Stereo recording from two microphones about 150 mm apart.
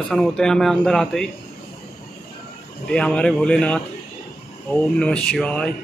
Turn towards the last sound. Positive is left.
turn(degrees=10)  # may be behind; listen again after turning